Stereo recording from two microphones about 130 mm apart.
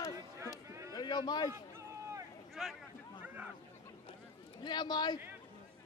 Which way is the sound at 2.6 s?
5° right (ahead or behind).